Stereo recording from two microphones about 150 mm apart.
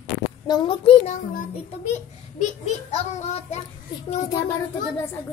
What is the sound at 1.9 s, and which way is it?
A child's voice, 50° left (ahead or behind).